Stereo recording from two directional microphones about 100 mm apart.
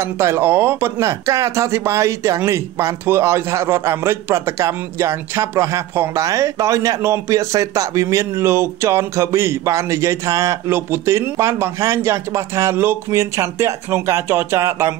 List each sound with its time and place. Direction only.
0.0 s speech: 25° right (ahead or behind)